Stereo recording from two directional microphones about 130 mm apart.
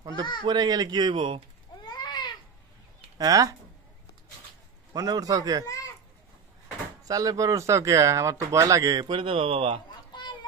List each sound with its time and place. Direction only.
0.1 s speech: 40° left (ahead or behind)
0.5 s speech: 30° right (ahead or behind)
1.9 s a sound: 35° left (ahead or behind)
3.2 s speech: 25° right (ahead or behind)
4.9 s speech: 30° right (ahead or behind)
7.0 s speech: 30° right (ahead or behind)
9.0 s a man's voice: 45° right (ahead or behind)